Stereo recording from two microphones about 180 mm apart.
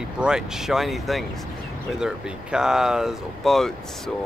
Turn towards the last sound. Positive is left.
turn(degrees=0)  # may be behind; listen again after turning